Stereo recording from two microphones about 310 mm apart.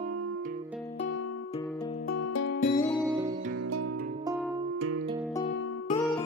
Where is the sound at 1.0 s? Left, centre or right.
Left.